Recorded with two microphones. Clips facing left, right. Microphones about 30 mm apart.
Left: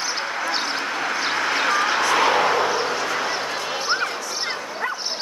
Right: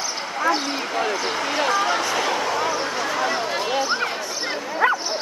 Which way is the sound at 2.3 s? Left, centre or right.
Left.